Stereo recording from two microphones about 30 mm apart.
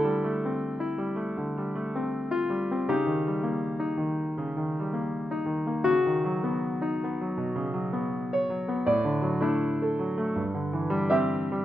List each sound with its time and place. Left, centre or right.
2.9 s music: centre
5.8 s music: centre
8.8 s music: right
11.1 s music: right